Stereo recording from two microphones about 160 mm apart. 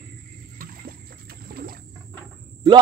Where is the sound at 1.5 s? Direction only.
65° right (ahead or behind).